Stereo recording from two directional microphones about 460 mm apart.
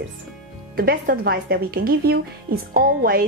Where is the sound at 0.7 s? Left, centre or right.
Centre.